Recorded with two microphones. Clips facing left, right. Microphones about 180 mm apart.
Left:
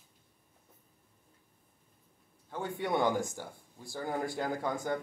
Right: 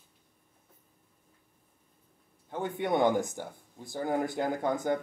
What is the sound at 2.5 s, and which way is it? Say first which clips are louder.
Speech: right 3 dB; 20° right (ahead or behind).